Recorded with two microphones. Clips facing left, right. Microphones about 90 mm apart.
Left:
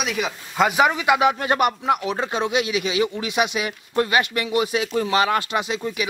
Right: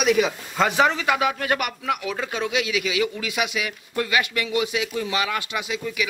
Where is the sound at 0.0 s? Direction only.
Centre (ahead or behind).